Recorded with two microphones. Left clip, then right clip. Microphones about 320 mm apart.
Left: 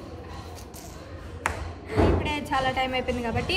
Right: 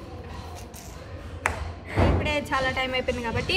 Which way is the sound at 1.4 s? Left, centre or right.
Centre.